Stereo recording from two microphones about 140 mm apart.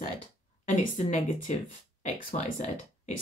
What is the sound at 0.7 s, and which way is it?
Speech, 55° left (ahead or behind).